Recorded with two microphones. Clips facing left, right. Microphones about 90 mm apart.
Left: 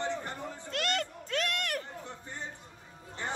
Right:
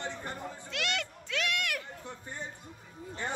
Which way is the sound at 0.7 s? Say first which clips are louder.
Left 3 dB; 40° left (ahead or behind).